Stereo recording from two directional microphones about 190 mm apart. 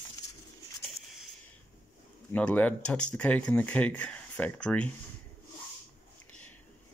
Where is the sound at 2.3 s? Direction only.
10° left (ahead or behind).